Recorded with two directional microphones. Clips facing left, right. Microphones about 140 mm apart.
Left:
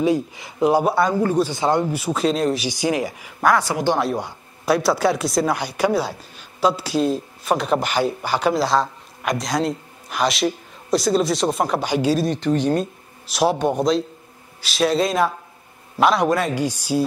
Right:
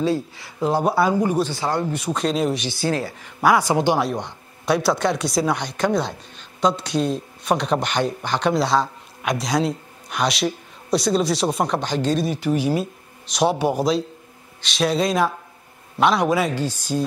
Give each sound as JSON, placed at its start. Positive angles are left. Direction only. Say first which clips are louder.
{"t": 0.0, "sound": "speech", "louder": "left 2 dB", "side_deg": 15}
{"t": 0.8, "sound": "speech", "louder": "even", "side_deg": 0}
{"t": 1.5, "sound": "speech", "louder": "left 4 dB", "side_deg": 20}
{"t": 1.9, "sound": "speech", "louder": "left 2 dB", "side_deg": 5}
{"t": 2.7, "sound": "speech", "louder": "left 2 dB", "side_deg": 15}
{"t": 3.3, "sound": "speech", "louder": "right 1 dB", "side_deg": -10}
{"t": 4.0, "sound": "speech", "louder": "left 1 dB", "side_deg": 5}
{"t": 12.3, "sound": "speech", "louder": "left 2 dB", "side_deg": -10}
{"t": 16.5, "sound": "speech", "louder": "left 3 dB", "side_deg": 10}